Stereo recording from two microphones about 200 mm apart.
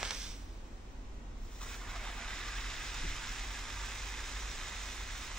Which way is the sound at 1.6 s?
5° left (ahead or behind).